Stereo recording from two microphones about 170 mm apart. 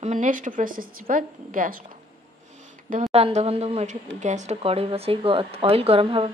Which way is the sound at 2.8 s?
50° right (ahead or behind).